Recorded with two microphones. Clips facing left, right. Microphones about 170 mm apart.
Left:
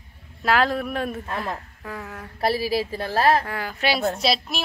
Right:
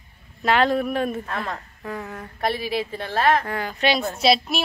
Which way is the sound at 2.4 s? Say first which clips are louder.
Left 2 dB; 35° left (ahead or behind).